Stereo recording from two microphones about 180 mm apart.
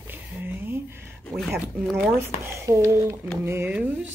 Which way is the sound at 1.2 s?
5° left (ahead or behind).